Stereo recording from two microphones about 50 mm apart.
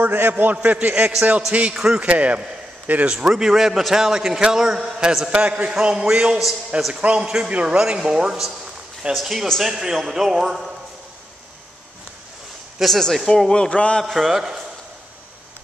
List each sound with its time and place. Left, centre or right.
0.0 s a man's voice: right
3.1 s a man's voice: centre
12.7 s speech: centre
13.5 s a man's voice: left
14.0 s a man's voice: centre